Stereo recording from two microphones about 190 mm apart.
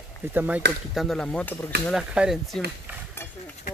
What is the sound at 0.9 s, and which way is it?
Speech, centre (ahead or behind).